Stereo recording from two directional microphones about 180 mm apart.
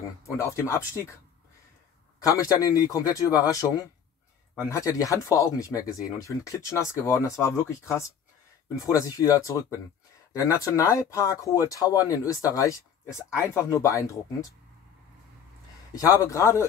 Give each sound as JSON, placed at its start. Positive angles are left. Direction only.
{"t": 0.4, "sound": "speech", "side_deg": 15}
{"t": 2.2, "sound": "speech", "side_deg": 20}
{"t": 15.9, "sound": "speech", "side_deg": 20}